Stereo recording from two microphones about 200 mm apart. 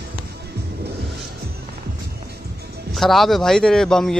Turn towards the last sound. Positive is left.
turn(degrees=5)  # may be behind; listen again after turning